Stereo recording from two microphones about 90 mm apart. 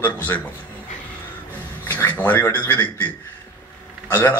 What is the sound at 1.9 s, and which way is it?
A man's voice, 20° left (ahead or behind).